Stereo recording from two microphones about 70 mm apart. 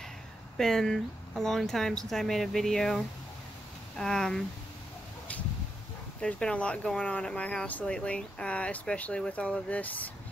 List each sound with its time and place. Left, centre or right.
0.6 s speech: centre
4.0 s speech: centre
6.2 s speech: centre